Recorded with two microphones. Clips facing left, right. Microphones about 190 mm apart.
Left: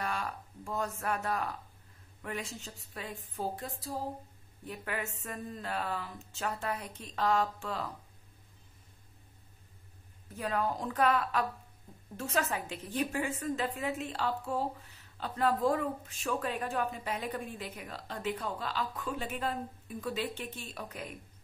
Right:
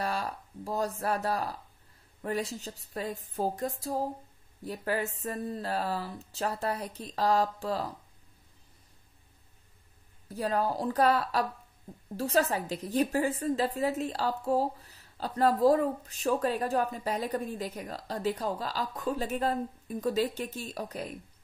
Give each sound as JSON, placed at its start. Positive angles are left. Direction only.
{"t": 0.0, "sound": "a woman's voice", "side_deg": -35}
{"t": 3.3, "sound": "a sound", "side_deg": -40}
{"t": 4.6, "sound": "a woman's voice", "side_deg": -35}
{"t": 10.2, "sound": "a woman's voice", "side_deg": -35}